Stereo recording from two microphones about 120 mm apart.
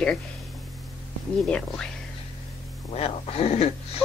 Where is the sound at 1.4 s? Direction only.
10° left (ahead or behind).